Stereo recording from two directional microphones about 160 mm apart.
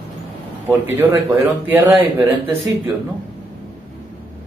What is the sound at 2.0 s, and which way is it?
Speech, 30° right (ahead or behind).